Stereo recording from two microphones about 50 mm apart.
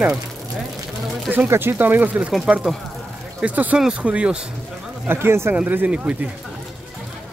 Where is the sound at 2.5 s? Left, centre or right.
Centre.